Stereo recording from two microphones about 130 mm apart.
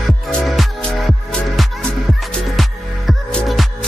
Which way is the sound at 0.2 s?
Centre (ahead or behind).